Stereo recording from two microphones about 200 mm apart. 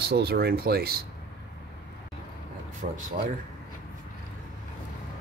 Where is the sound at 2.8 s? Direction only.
40° right (ahead or behind).